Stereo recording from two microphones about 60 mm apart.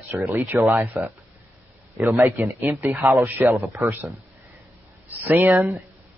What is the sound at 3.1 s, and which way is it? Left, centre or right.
Speech, right.